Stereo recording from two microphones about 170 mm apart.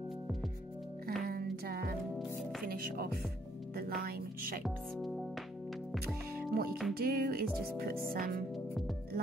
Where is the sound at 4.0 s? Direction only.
60° right (ahead or behind).